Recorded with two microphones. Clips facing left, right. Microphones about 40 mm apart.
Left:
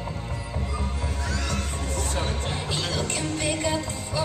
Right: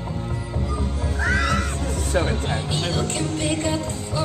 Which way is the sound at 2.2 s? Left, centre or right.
Right.